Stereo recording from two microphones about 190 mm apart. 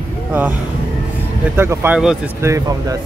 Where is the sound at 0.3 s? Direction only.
10° right (ahead or behind).